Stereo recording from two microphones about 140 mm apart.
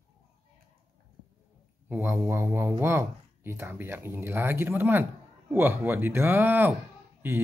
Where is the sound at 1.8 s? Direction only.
15° right (ahead or behind).